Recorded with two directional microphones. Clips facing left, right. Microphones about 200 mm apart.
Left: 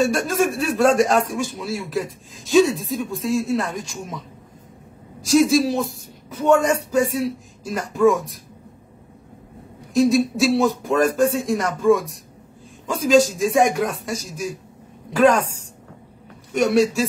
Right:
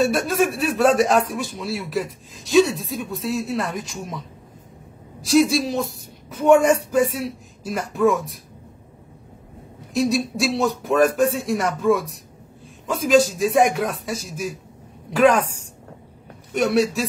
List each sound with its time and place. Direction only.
0.1 s a man's voice: centre (ahead or behind)
5.2 s a man's voice: centre (ahead or behind)
9.9 s a man's voice: centre (ahead or behind)